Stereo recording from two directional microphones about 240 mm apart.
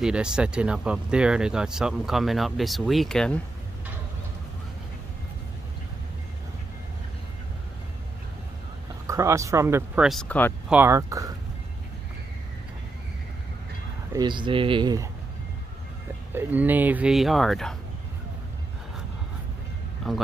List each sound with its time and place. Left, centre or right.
0.0 s speech: centre
9.0 s speech: centre
10.7 s speech: centre
14.1 s speech: centre
16.3 s speech: centre
20.0 s speech: centre